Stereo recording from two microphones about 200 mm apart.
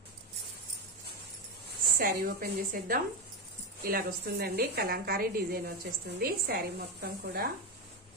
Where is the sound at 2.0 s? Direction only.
45° right (ahead or behind).